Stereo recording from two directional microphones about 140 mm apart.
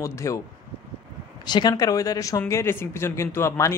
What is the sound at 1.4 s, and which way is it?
Speech, 30° left (ahead or behind).